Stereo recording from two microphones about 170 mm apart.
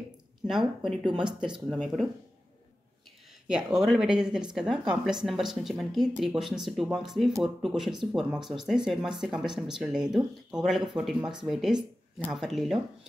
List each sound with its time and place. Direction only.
0.5 s speech: centre (ahead or behind)
1.0 s speech: 30° right (ahead or behind)
1.7 s speech: centre (ahead or behind)
3.4 s speech: 5° right (ahead or behind)